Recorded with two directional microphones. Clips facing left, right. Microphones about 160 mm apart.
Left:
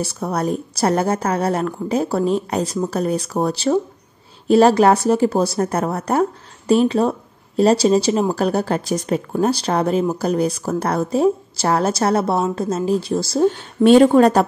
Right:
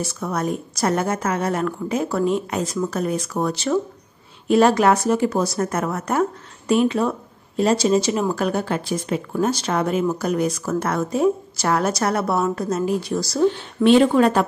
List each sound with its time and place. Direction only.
0.2 s speech: 35° left (ahead or behind)
13.5 s speech: 40° left (ahead or behind)